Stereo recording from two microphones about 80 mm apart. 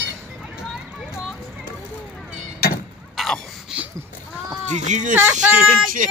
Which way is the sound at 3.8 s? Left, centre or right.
Centre.